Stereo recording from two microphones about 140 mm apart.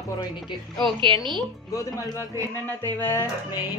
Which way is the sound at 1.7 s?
25° left (ahead or behind).